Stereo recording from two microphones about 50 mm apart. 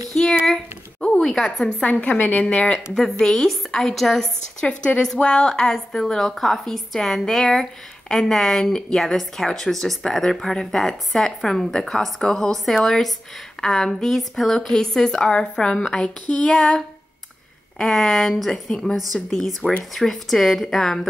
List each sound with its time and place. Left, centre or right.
0.1 s a sound: centre
1.2 s a woman's voice: centre
1.8 s speech: left
2.1 s a woman's voice: left
2.4 s speech: left
2.9 s a woman's voice: centre
4.6 s a woman's voice: left
16.4 s a woman's voice: centre